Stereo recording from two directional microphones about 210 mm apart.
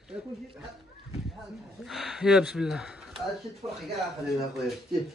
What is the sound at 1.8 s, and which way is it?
Speech, centre (ahead or behind).